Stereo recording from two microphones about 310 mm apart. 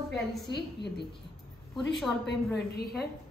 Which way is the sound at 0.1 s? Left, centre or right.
Centre.